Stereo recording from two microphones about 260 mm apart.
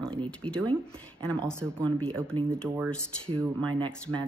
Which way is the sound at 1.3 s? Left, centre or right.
Centre.